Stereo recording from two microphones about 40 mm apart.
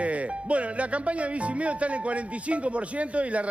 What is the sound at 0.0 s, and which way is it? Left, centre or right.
Speech, right.